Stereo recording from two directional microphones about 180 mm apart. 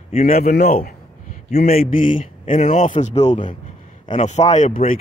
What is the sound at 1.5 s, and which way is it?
A man's voice, 55° left (ahead or behind).